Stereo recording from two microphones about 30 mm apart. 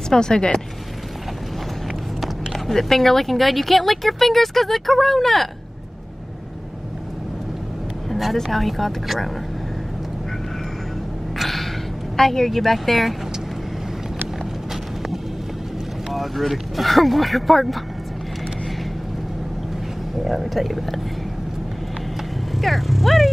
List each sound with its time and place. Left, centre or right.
0.1 s speech: left
2.2 s a sound: centre
2.7 s speech: centre
8.1 s a sound: centre
8.4 s speech: centre
11.3 s a sound: centre
12.2 s speech: centre
16.1 s speech: centre
20.2 s speech: centre
22.6 s speech: centre